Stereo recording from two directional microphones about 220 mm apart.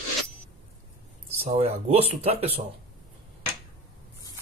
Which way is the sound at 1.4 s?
25° right (ahead or behind).